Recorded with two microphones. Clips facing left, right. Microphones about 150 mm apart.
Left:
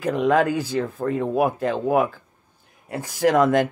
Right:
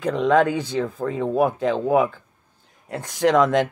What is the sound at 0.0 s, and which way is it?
Speech, 5° left (ahead or behind).